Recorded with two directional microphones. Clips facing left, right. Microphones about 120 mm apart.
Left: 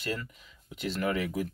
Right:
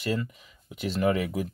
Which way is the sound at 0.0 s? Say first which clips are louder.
Right 6 dB; 15° right (ahead or behind).